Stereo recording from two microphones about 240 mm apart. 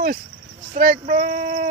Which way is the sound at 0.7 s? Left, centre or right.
Right.